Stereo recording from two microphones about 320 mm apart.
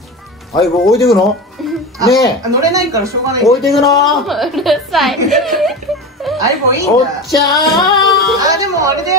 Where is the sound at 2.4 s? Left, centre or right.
Centre.